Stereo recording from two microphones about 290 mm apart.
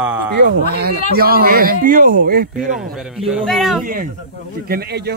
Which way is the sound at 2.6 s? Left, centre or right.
Centre.